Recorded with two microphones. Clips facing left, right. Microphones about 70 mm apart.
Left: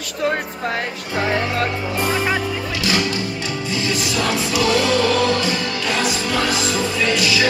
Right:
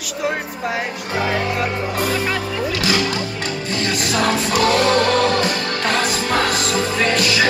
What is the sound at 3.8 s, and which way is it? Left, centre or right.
Music, right.